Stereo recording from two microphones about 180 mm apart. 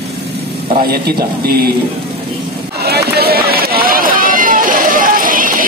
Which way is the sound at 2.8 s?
60° right (ahead or behind).